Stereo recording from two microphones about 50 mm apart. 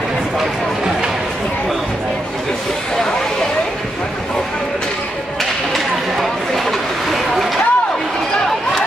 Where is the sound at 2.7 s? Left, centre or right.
Centre.